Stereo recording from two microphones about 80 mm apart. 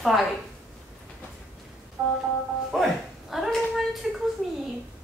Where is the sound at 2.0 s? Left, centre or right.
Right.